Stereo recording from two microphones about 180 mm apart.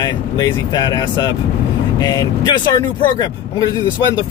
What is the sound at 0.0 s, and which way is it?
Speech, 20° left (ahead or behind).